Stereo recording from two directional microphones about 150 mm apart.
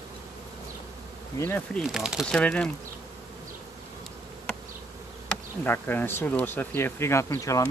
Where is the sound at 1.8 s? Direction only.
Centre (ahead or behind).